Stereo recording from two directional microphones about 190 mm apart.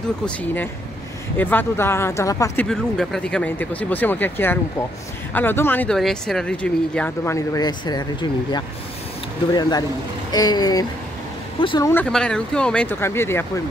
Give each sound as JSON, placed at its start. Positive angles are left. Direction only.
{"t": 0.2, "sound": "speech", "side_deg": 10}
{"t": 2.6, "sound": "speech", "side_deg": 5}
{"t": 11.9, "sound": "speech", "side_deg": 5}